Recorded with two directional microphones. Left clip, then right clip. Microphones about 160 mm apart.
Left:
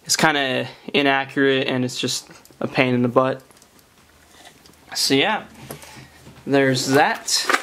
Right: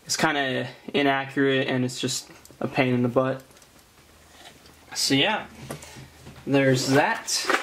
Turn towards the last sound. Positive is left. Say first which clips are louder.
# left 4 dB
turn(degrees=30)  # may be behind; listen again after turning